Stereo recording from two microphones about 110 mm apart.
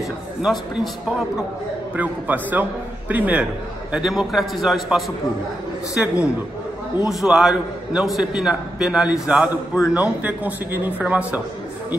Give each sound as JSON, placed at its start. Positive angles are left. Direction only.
{"t": 2.0, "sound": "a man's voice", "side_deg": -15}